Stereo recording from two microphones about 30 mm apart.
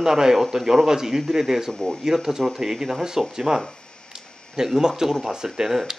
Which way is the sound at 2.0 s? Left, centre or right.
Centre.